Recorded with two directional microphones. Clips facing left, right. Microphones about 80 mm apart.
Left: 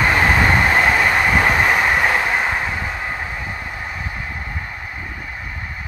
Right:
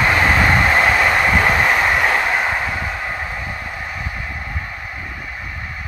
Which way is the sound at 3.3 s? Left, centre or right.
Centre.